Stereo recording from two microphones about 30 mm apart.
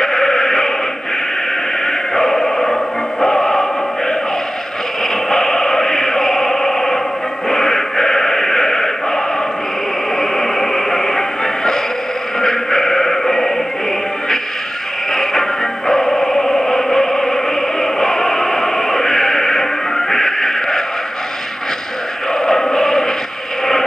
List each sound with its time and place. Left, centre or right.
0.0 s music: centre
1.9 s music: centre
5.3 s music: centre
7.4 s a sound: centre
10.1 s music: centre
15.9 s music: centre
22.3 s music: centre